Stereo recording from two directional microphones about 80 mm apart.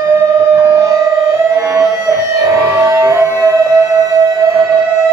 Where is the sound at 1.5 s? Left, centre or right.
Right.